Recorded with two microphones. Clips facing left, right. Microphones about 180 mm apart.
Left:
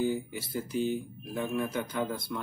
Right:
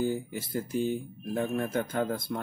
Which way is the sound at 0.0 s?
50° right (ahead or behind).